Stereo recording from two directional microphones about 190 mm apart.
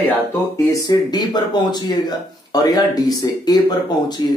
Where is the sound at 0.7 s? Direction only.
20° left (ahead or behind).